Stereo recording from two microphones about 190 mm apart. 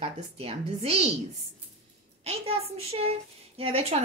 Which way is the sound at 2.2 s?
30° right (ahead or behind).